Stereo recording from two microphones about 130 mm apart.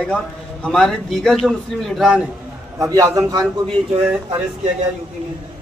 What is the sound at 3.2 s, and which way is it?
Speech, 30° right (ahead or behind).